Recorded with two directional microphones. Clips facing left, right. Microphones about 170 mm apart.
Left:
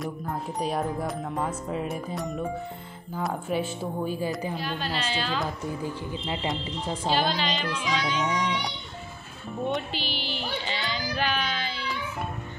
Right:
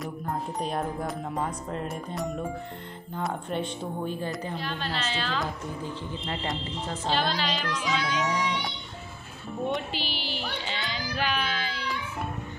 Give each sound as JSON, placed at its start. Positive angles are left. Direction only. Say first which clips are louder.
{"t": 0.0, "sound": "a woman's voice", "louder": "even", "side_deg": 0}
{"t": 8.3, "sound": "a woman's voice", "louder": "left 1 dB", "side_deg": 10}
{"t": 10.0, "sound": "speech", "louder": "left 1 dB", "side_deg": -40}
{"t": 10.7, "sound": "a sound", "louder": "left 2 dB", "side_deg": 0}